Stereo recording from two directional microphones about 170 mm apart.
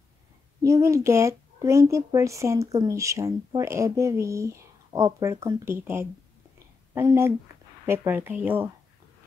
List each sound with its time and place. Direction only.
0.6 s a woman's voice: 20° right (ahead or behind)